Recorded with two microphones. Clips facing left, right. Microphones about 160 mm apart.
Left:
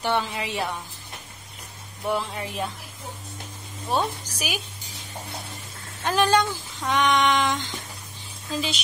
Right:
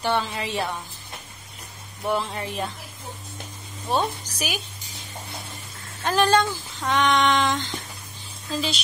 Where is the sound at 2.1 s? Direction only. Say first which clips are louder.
Right 1 dB; 5° left (ahead or behind).